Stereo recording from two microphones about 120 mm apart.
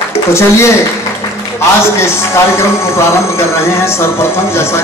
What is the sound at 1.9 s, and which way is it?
Speech, 20° left (ahead or behind).